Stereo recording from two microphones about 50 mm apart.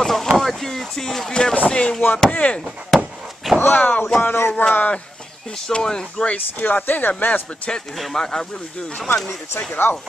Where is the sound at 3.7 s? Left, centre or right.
Left.